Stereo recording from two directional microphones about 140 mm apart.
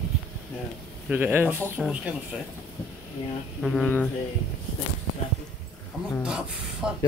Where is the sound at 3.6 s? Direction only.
Centre (ahead or behind).